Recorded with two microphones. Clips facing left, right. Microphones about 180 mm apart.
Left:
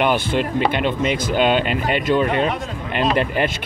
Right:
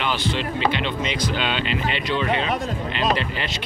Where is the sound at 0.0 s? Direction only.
55° left (ahead or behind).